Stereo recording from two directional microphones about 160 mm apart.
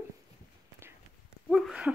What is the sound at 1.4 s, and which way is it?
Speech, centre (ahead or behind).